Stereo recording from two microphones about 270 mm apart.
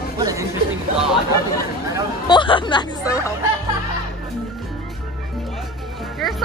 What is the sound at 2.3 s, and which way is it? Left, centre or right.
Speech, centre.